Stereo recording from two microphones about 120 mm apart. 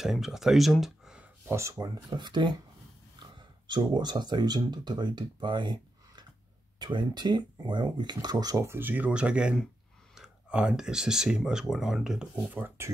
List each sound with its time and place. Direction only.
0.0 s speech: 5° right (ahead or behind)
1.5 s speech: 25° right (ahead or behind)
8.6 s speech: 15° right (ahead or behind)
12.5 s speech: 20° right (ahead or behind)